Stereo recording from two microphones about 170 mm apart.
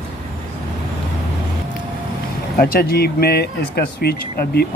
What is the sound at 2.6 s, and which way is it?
Speech, 60° left (ahead or behind).